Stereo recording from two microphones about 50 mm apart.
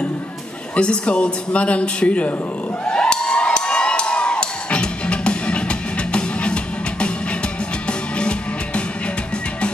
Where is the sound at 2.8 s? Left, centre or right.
Centre.